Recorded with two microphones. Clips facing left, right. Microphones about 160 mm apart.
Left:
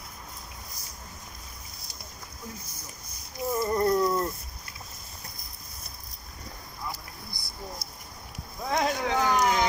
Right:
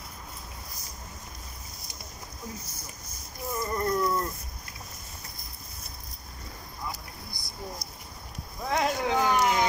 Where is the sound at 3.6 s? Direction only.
25° left (ahead or behind).